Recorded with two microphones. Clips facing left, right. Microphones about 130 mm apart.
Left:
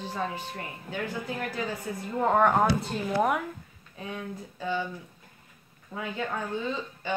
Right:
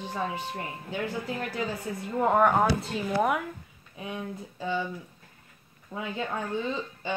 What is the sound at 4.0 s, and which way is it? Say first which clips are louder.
Speech: right 1 dB; 15° right (ahead or behind).